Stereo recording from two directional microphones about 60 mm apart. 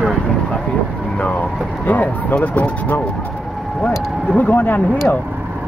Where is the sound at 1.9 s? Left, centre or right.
Left.